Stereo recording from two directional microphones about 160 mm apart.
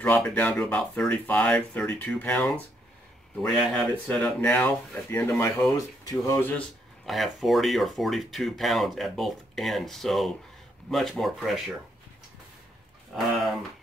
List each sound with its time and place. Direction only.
0.0 s speech: 10° left (ahead or behind)
4.1 s speech: 10° left (ahead or behind)
7.1 s speech: centre (ahead or behind)
13.1 s speech: centre (ahead or behind)